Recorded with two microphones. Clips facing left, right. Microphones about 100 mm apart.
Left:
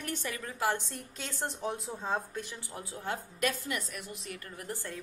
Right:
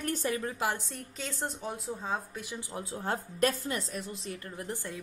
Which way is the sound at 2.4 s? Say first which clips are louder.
Right 4 dB; 15° right (ahead or behind).